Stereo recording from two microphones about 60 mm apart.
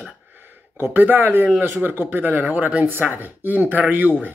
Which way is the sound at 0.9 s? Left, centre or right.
Right.